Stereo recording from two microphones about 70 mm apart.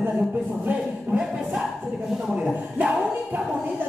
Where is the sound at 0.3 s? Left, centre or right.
Right.